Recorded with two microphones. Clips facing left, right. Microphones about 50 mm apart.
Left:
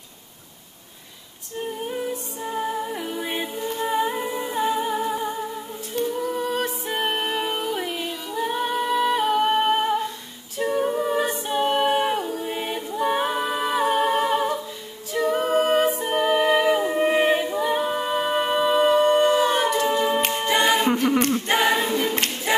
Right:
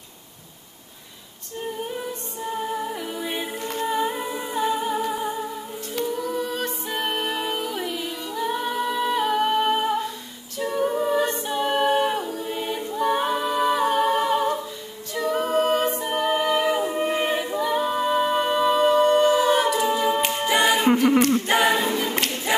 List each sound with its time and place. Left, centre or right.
2.7 s humming: centre
3.5 s humming: right
3.8 s humming: centre
6.1 s music: centre
8.4 s humming: centre
10.6 s a capella: centre
12.4 s a capella: left
12.7 s a capella: centre
21.9 s choir: centre